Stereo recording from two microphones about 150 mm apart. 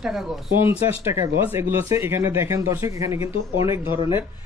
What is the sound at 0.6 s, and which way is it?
Speech, 15° right (ahead or behind).